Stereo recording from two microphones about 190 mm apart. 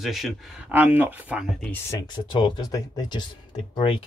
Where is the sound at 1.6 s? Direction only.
15° left (ahead or behind).